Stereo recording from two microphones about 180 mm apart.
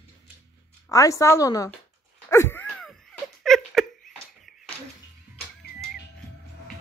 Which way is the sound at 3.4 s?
Centre (ahead or behind).